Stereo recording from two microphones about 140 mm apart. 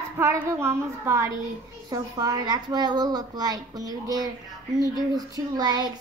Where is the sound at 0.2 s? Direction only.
20° right (ahead or behind).